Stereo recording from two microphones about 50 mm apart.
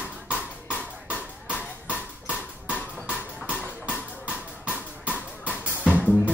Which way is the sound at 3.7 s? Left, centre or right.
Right.